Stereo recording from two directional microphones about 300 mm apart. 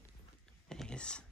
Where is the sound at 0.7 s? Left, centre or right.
Centre.